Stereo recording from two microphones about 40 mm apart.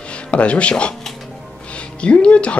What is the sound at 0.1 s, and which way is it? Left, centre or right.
Speech, left.